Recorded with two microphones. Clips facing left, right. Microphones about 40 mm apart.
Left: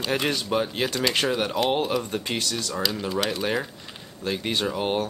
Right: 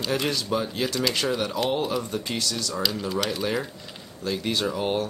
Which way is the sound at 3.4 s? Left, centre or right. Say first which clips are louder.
Left 1 dB; centre.